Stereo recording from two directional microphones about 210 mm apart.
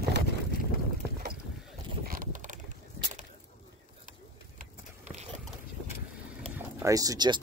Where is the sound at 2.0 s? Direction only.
40° right (ahead or behind).